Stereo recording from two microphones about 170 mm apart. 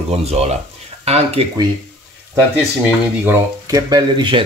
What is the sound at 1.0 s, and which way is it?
Speech, 35° right (ahead or behind).